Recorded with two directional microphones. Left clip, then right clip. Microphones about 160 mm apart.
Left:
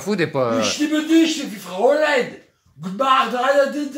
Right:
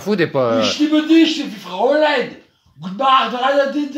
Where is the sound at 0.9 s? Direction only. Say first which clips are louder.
Right 4 dB; 10° left (ahead or behind).